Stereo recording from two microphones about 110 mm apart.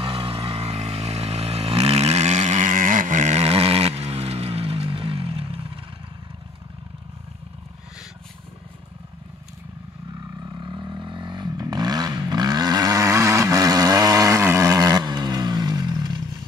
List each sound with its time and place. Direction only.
0.0 s vehicle: 60° right (ahead or behind); by 2.6 s 90° right
3.2 s a sound: 80° right; by 5.7 s 60° right (ahead or behind)
10.4 s vehicle: 45° right (ahead or behind)